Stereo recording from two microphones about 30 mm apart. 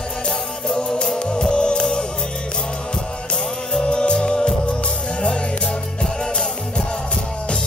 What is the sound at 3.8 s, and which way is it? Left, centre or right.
Music, left.